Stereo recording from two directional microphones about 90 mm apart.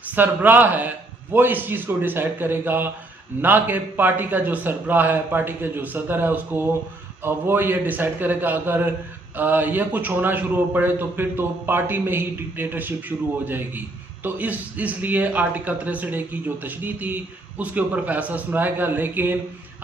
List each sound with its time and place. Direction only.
0.1 s a man's voice: 20° right (ahead or behind)